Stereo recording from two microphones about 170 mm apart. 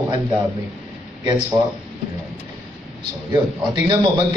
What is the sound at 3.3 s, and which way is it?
Speech, 25° right (ahead or behind).